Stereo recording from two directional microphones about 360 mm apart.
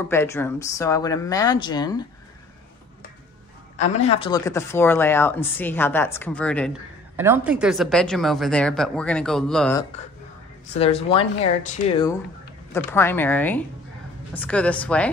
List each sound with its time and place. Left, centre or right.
0.1 s speech: centre
3.8 s speech: centre
10.7 s speech: centre
12.7 s speech: centre